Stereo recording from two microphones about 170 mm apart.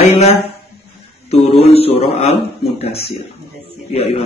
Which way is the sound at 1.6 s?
35° left (ahead or behind).